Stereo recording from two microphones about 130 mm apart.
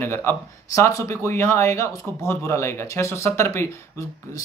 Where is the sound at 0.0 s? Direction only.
20° left (ahead or behind).